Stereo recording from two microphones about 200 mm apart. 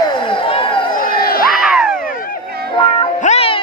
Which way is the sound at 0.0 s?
25° left (ahead or behind).